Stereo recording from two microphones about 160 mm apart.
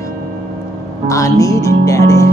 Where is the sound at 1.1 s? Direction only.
20° left (ahead or behind).